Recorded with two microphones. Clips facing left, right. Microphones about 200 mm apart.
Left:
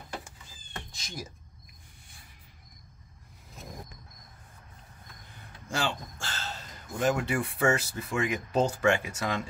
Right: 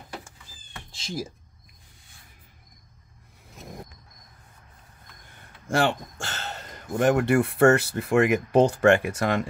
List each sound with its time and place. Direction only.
0.9 s speech: 30° right (ahead or behind)
5.7 s speech: 60° right (ahead or behind)